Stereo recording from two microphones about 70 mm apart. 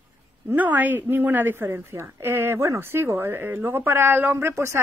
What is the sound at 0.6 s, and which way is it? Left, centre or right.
Speech, right.